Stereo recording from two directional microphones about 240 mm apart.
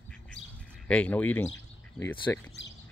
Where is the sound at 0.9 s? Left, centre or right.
Centre.